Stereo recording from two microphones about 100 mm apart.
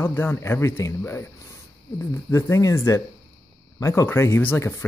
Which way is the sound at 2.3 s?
30° left (ahead or behind).